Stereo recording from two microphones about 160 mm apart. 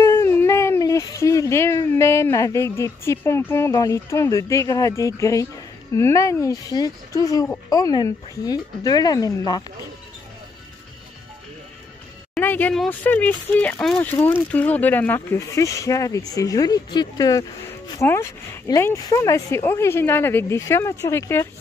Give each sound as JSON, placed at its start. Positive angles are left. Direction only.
{"t": 0.0, "sound": "speech", "side_deg": 15}
{"t": 12.4, "sound": "speech", "side_deg": 10}